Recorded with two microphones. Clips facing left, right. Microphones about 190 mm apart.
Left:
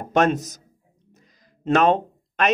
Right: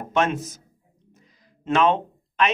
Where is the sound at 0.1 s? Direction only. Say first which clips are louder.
Left 4 dB; 40° left (ahead or behind).